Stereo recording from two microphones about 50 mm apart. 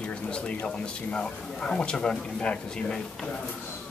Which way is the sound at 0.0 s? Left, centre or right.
Left.